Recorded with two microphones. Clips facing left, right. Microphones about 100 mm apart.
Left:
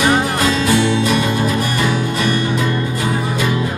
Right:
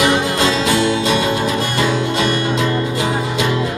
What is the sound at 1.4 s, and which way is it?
Music, 25° right (ahead or behind).